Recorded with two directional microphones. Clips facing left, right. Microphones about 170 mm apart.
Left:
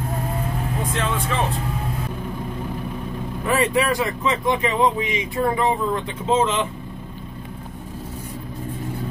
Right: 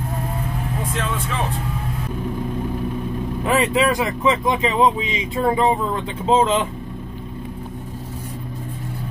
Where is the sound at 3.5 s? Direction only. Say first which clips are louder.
Right 1 dB; 20° right (ahead or behind).